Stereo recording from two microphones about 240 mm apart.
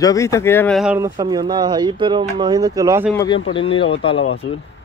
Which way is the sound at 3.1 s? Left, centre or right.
Centre.